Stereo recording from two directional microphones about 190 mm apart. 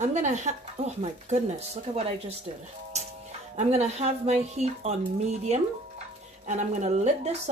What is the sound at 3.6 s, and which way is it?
Speech, 35° right (ahead or behind).